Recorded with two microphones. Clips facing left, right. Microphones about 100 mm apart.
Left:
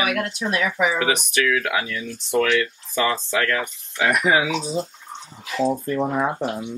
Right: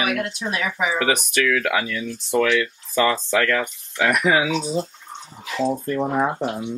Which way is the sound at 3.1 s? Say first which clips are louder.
Right 2 dB; 20° left (ahead or behind).